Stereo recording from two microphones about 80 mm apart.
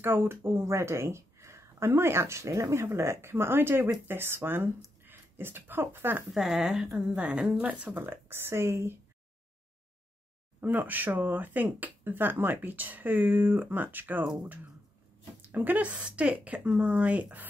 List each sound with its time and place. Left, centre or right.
0.0 s speech: right
6.3 s speech: centre
8.0 s speech: right
10.6 s speech: right